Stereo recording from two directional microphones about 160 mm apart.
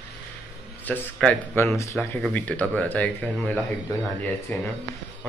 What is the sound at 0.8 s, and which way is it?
Speech, 10° left (ahead or behind).